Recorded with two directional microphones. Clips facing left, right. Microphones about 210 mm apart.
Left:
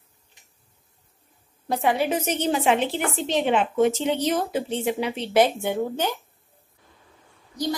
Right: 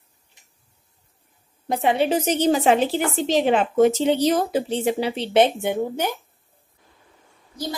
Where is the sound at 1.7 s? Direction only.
20° right (ahead or behind).